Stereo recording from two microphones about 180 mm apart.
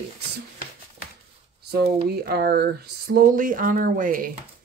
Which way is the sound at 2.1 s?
60° right (ahead or behind).